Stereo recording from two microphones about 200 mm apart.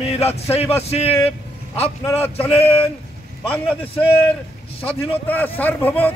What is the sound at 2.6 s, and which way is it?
Speech, 25° left (ahead or behind).